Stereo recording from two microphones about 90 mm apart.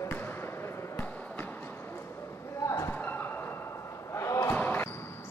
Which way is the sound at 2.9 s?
20° left (ahead or behind).